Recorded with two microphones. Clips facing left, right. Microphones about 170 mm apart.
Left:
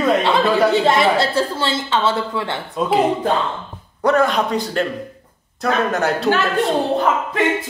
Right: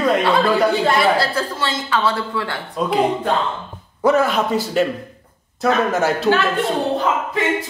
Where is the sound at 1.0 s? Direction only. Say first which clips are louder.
Left 1 dB; 25° left (ahead or behind).